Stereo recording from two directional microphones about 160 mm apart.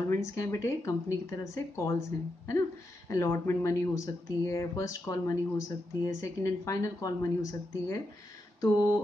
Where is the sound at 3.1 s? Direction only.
15° left (ahead or behind).